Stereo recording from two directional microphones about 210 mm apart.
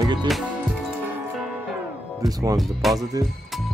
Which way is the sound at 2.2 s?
15° right (ahead or behind).